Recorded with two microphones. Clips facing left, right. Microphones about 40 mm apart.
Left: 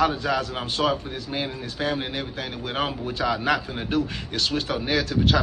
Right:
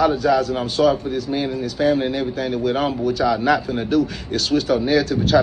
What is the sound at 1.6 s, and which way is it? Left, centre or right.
A man's voice, left.